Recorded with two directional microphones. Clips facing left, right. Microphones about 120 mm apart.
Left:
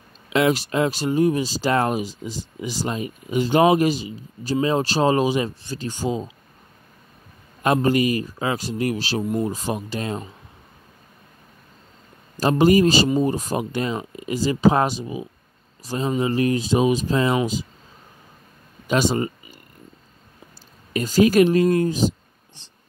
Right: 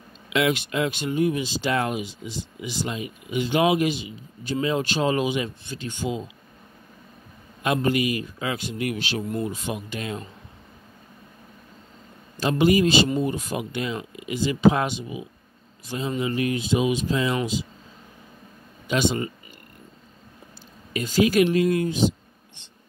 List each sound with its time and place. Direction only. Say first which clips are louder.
0.3 s speech: left 4 dB; 35° left (ahead or behind)
7.6 s speech: left 4 dB; 40° left (ahead or behind)
12.4 s speech: left 4 dB; 40° left (ahead or behind)
18.9 s speech: left 3 dB; 40° left (ahead or behind)
20.9 s speech: left 4 dB; 40° left (ahead or behind)